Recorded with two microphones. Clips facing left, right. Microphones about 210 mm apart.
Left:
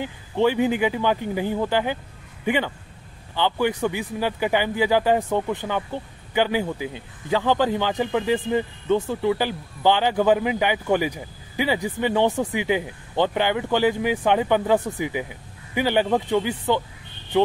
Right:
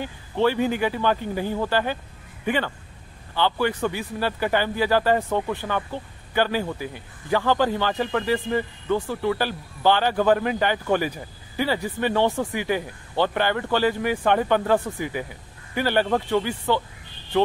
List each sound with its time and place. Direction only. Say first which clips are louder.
0.0 s speech: left 1 dB; 15° left (ahead or behind)